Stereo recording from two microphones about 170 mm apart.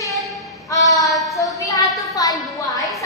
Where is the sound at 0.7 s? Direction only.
20° left (ahead or behind).